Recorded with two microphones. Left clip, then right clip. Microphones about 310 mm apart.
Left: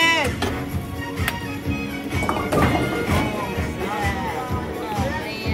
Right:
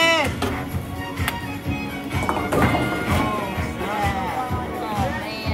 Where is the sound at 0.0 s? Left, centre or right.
Centre.